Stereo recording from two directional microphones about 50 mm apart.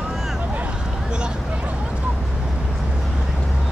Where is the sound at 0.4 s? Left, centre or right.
Right.